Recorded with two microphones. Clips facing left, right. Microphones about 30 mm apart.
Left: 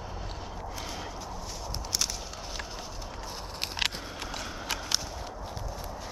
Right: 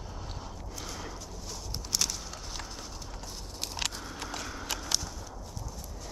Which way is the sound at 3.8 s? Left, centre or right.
Left.